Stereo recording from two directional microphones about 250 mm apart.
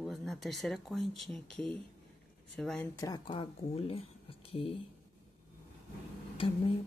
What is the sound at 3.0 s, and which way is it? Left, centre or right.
Speech, centre.